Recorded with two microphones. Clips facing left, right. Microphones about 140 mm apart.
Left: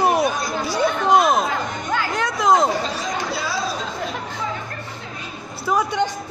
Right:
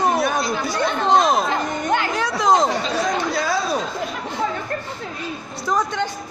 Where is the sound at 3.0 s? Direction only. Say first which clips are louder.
Right 4 dB; 45° right (ahead or behind).